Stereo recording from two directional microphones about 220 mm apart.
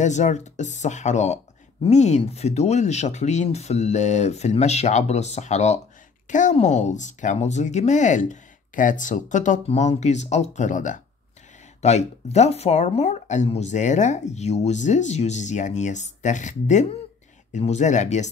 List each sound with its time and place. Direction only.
0.0 s speech: 30° left (ahead or behind)